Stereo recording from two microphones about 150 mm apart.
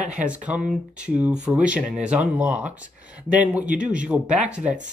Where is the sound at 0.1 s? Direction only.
10° right (ahead or behind).